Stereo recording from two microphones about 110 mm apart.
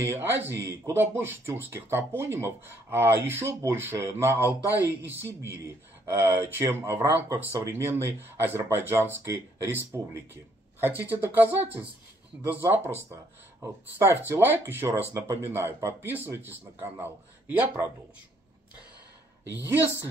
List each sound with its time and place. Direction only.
0.0 s speech: 20° right (ahead or behind)